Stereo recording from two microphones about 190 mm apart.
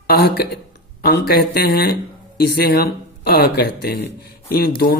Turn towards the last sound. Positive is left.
turn(degrees=55)  # may be behind; listen again after turning